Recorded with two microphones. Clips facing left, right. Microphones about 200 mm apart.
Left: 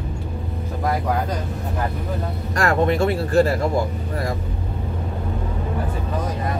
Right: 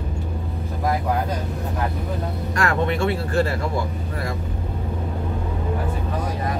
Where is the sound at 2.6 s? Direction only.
40° left (ahead or behind).